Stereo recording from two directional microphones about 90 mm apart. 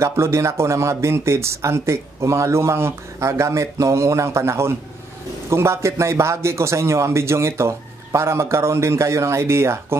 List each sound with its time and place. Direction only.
0.0 s speech: 30° right (ahead or behind)